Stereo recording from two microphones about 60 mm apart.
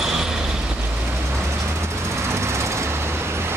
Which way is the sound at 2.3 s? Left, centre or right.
Right.